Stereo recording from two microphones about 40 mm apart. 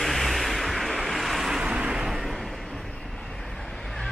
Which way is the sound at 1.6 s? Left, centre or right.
Right.